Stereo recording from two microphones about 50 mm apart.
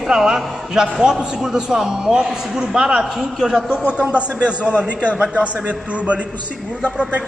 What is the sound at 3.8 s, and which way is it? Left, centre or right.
A man's voice, right.